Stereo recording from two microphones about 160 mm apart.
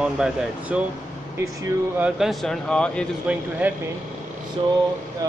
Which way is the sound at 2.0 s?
Centre (ahead or behind).